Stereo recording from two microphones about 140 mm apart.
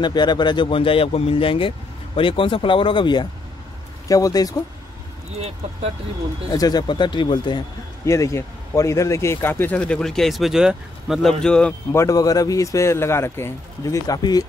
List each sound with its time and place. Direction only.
0.0 s speech: 30° left (ahead or behind)
6.5 s speech: 30° left (ahead or behind)
8.0 s a man's voice: 20° left (ahead or behind); by 11.7 s 5° left (ahead or behind)
11.9 s speech: 25° left (ahead or behind)